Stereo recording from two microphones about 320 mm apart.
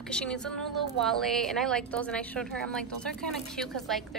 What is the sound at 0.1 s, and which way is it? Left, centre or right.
A woman's voice, centre.